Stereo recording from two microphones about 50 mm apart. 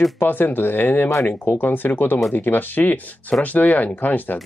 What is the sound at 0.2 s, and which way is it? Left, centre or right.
Speech, left.